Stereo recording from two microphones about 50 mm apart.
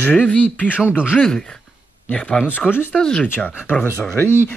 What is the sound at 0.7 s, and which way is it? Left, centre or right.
Speech, left.